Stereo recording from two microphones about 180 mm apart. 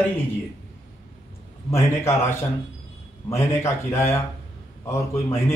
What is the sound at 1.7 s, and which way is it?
Speech, 15° left (ahead or behind).